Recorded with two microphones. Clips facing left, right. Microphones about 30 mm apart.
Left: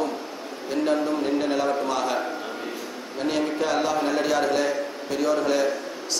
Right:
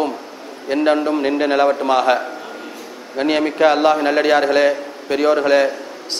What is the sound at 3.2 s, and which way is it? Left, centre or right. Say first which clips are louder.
A man's voice: right 10 dB; right.